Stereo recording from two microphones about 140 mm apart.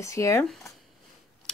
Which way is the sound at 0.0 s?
20° left (ahead or behind).